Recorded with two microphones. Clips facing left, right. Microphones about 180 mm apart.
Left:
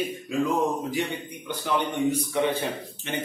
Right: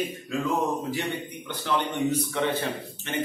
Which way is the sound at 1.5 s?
10° left (ahead or behind).